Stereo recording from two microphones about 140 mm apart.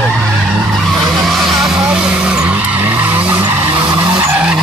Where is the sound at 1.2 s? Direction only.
Centre (ahead or behind).